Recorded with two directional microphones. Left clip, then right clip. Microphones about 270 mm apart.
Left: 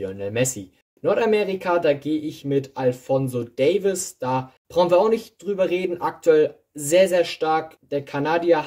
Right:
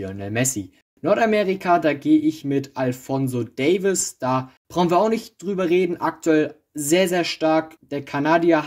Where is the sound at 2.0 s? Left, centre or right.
Right.